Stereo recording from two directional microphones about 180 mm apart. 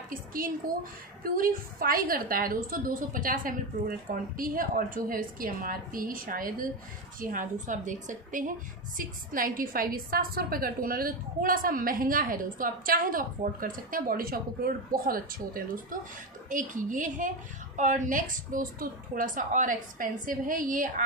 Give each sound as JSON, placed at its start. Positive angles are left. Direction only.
{"t": 0.1, "sound": "a woman's voice", "side_deg": -50}